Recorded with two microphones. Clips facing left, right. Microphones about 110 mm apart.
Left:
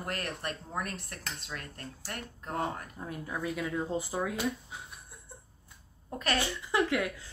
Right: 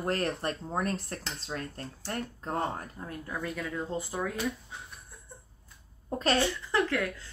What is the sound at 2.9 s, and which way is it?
Speech, 10° left (ahead or behind).